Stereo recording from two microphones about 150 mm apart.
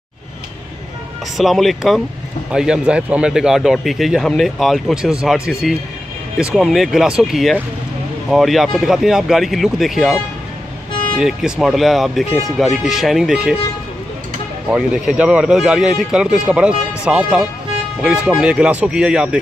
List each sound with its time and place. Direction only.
1.3 s a man's voice: centre (ahead or behind)
14.7 s a man's voice: 5° right (ahead or behind)